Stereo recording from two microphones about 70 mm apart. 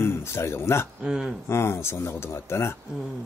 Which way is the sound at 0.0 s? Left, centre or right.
Left.